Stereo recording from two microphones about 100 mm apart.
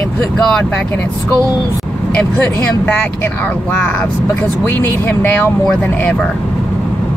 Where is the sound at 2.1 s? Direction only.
15° left (ahead or behind).